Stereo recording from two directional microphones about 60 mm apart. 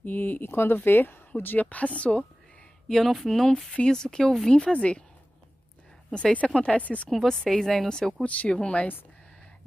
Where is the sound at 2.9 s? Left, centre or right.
Centre.